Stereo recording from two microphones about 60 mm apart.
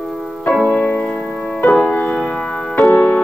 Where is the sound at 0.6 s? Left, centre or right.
Left.